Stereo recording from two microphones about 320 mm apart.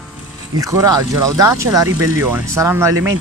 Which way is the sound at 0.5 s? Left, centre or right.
Centre.